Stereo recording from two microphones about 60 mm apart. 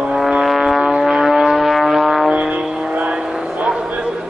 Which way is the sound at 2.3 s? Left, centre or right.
Right.